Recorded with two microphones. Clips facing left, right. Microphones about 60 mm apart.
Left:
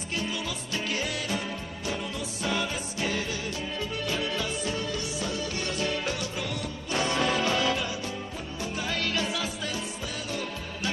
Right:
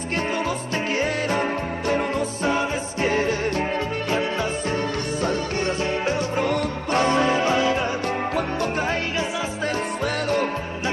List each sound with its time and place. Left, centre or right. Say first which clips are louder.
0.9 s music: right 10 dB; right
2.4 s music: right 5 dB; right
6.4 s music: right 11 dB; right
7.2 s music: right 6 dB; right